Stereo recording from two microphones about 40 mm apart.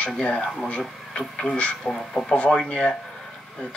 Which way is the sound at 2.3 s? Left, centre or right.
Left.